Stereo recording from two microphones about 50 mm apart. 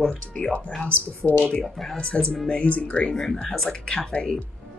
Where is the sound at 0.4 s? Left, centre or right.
Centre.